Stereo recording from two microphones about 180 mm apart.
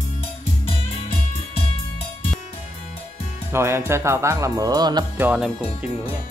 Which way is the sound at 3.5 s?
15° right (ahead or behind).